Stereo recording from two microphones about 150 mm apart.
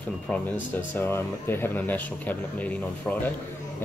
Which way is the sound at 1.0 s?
15° left (ahead or behind).